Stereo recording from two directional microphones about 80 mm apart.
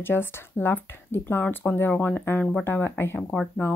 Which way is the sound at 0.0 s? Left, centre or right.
Left.